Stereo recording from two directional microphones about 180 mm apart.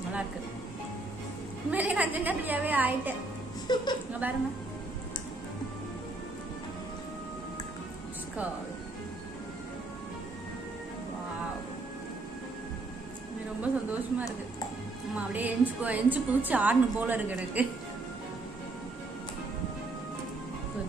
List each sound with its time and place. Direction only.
1.7 s a woman's voice: 10° right (ahead or behind)
3.7 s a woman's voice: 25° left (ahead or behind)
13.6 s a sound: 10° right (ahead or behind)
15.1 s a woman's voice: 10° right (ahead or behind)